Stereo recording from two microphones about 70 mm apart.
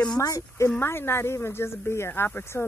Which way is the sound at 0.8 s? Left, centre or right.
Left.